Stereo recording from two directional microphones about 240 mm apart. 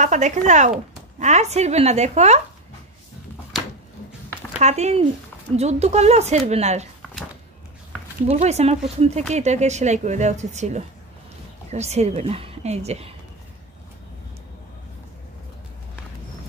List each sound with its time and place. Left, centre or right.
0.0 s speech: right
4.6 s speech: right
8.3 s speech: right